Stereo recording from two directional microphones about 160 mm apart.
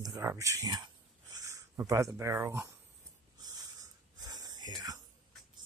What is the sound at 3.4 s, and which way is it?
Wheeze, 25° right (ahead or behind).